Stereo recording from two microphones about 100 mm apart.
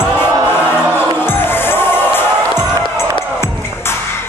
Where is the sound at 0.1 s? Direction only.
20° left (ahead or behind).